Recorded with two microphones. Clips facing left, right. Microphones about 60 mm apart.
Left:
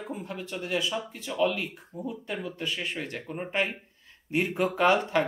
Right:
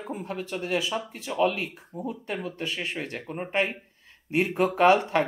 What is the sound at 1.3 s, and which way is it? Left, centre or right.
Speech, right.